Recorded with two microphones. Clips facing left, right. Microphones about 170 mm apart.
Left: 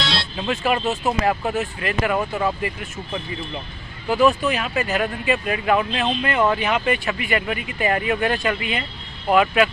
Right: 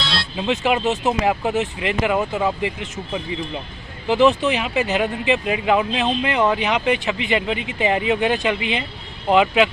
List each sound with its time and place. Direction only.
0.4 s speech: 15° right (ahead or behind)